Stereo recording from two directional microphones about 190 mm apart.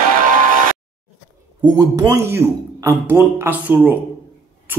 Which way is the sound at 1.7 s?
20° right (ahead or behind).